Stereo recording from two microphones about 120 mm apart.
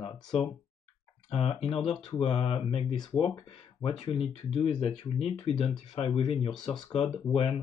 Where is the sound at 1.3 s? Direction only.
55° left (ahead or behind).